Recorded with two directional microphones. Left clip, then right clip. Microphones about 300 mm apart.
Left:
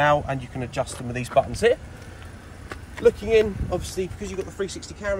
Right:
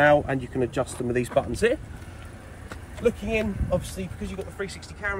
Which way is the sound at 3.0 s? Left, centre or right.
Left.